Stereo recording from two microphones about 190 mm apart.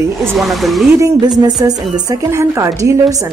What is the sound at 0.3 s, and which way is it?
Speech, centre (ahead or behind).